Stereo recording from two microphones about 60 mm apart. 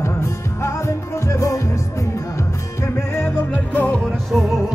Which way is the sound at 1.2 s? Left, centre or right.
Left.